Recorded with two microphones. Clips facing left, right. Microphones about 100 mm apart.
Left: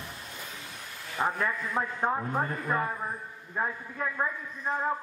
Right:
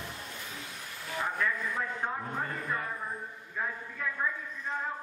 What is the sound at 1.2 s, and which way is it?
A man's voice, 40° left (ahead or behind).